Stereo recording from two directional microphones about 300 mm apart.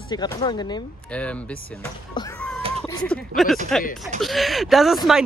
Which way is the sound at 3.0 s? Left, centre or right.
Centre.